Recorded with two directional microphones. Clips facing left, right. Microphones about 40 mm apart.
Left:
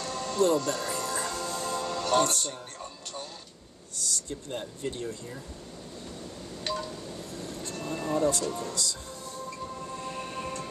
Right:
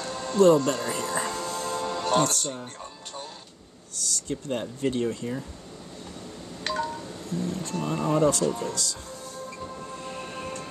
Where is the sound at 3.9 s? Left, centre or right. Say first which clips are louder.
Right 4 dB; right.